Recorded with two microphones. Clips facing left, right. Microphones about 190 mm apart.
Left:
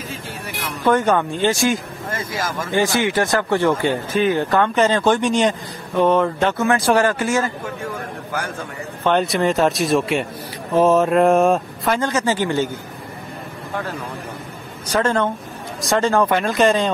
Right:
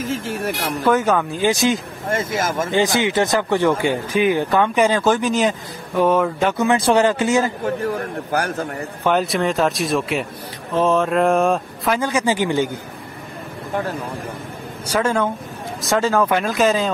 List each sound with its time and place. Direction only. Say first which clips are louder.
0.8 s speech: left 1 dB; 5° right (ahead or behind)
1.5 s speech: right 1 dB; 20° right (ahead or behind)
7.6 s a man's voice: right 6 dB; 40° right (ahead or behind)
9.0 s speech: left 1 dB; 5° right (ahead or behind)
14.9 s speech: left 1 dB; 10° right (ahead or behind)